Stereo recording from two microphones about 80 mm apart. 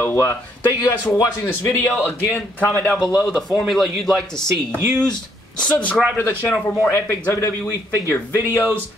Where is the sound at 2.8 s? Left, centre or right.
Centre.